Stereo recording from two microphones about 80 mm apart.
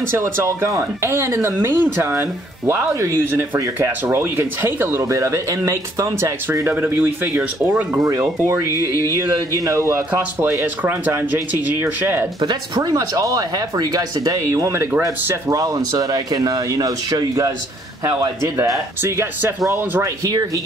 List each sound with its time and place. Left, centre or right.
0.1 s speech: right
6.7 s speech: right
8.0 s speech: right
8.7 s speech: left
9.7 s speech: right
10.6 s speech: right
12.4 s speech: right
12.9 s speech: right
20.0 s speech: right